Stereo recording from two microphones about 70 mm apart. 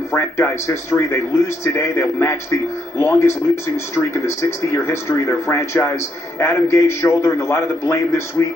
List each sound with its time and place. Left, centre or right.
0.1 s a man's voice: left